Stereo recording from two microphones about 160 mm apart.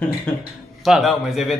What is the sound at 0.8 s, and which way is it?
Speech, centre (ahead or behind).